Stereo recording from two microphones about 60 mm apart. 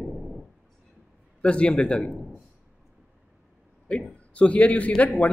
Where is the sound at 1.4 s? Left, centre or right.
Centre.